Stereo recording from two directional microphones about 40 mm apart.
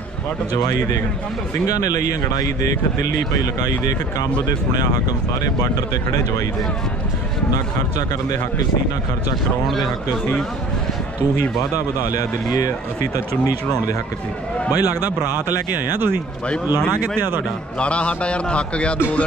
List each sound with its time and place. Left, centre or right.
14.7 s speech: right
17.7 s a man's voice: left